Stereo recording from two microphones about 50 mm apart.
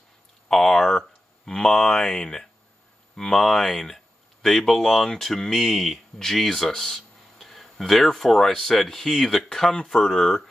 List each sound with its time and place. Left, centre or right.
0.5 s speech: centre
1.4 s a sound: centre
3.2 s speech: centre